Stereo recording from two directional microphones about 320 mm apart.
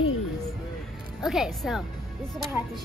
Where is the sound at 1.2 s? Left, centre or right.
Centre.